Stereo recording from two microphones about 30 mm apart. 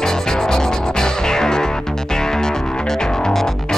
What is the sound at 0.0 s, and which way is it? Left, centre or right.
Music, centre.